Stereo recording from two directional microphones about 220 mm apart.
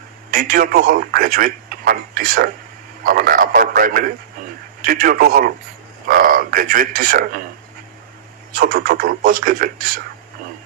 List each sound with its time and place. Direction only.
0.3 s a man's voice: 40° right (ahead or behind)
8.5 s a man's voice: 40° right (ahead or behind)